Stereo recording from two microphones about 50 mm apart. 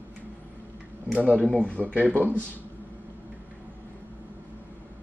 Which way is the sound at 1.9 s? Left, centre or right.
Right.